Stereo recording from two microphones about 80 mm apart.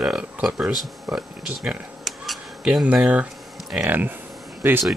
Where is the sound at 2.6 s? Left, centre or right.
Centre.